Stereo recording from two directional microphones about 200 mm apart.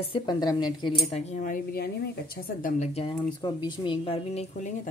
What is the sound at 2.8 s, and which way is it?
A woman's voice, 30° left (ahead or behind).